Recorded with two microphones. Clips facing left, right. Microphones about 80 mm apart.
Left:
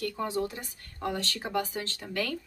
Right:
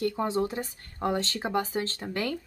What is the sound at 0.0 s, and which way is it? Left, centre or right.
Speech, right.